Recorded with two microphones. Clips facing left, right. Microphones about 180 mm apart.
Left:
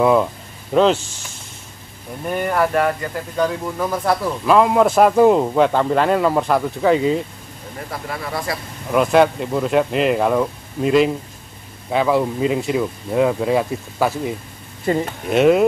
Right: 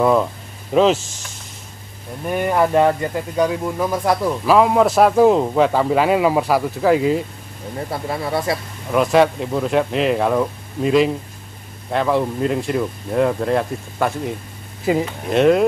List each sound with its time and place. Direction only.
0.0 s speech: centre (ahead or behind)
2.3 s speech: 15° right (ahead or behind)
4.6 s speech: centre (ahead or behind)
7.9 s speech: 25° right (ahead or behind)
8.9 s speech: centre (ahead or behind)